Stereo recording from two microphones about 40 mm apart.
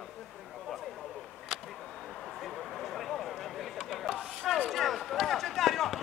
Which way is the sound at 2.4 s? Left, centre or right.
Centre.